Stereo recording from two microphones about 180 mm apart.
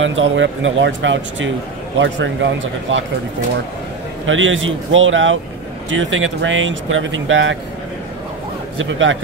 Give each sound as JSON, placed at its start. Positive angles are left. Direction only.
{"t": 0.0, "sound": "speech", "side_deg": -90}
{"t": 4.3, "sound": "speech", "side_deg": -90}
{"t": 8.7, "sound": "speech", "side_deg": -90}